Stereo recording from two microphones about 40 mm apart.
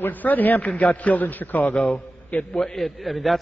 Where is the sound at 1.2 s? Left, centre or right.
Left.